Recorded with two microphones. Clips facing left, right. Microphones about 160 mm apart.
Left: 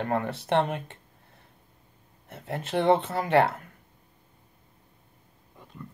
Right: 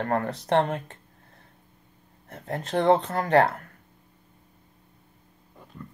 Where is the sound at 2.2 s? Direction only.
5° left (ahead or behind).